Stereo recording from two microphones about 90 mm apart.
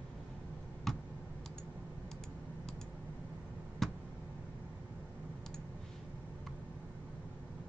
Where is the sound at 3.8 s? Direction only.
5° left (ahead or behind).